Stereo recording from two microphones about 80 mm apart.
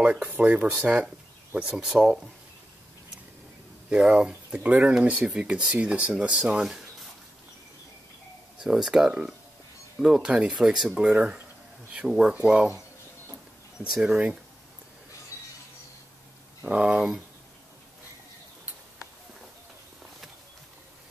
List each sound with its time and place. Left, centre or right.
0.0 s speech: centre
3.9 s speech: centre
8.5 s speech: centre
13.8 s speech: centre
16.6 s speech: centre